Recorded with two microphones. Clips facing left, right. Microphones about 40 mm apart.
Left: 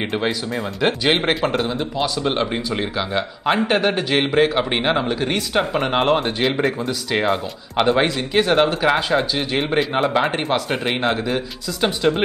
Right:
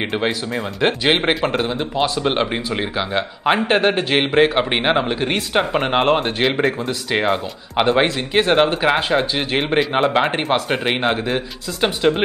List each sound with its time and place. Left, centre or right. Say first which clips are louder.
0.7 s speech: right 1 dB; centre